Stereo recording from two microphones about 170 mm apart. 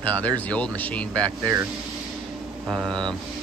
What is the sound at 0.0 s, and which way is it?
A man's voice, 10° left (ahead or behind).